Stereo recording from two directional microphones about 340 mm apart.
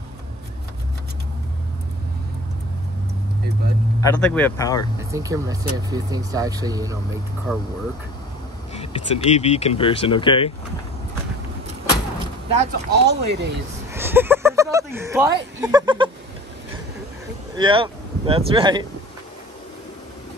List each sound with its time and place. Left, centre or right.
4.0 s speech: centre
5.1 s speech: centre
7.5 s speech: centre
8.7 s speech: centre
12.5 s speech: right
13.9 s a sound: centre
15.6 s speech: centre
17.6 s speech: centre